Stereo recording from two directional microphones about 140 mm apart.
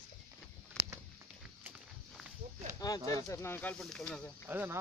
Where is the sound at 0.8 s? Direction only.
5° left (ahead or behind).